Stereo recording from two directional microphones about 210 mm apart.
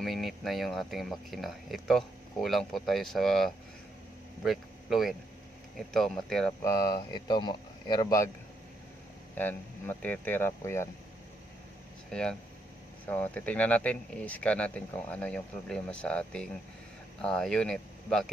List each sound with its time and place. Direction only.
0.0 s speech: centre (ahead or behind)
6.6 s speech: 15° left (ahead or behind)
9.3 s speech: 10° left (ahead or behind)
12.1 s speech: 5° left (ahead or behind)